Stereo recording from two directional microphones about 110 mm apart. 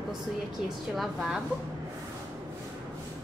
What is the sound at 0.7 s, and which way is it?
Speech, centre (ahead or behind).